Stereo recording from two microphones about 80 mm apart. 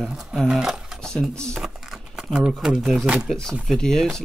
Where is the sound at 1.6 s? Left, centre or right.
Centre.